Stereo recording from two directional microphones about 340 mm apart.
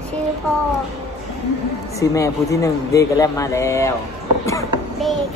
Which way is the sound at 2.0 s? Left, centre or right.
Centre.